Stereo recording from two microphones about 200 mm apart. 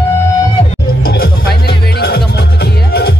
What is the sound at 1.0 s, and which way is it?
Music, 50° left (ahead or behind).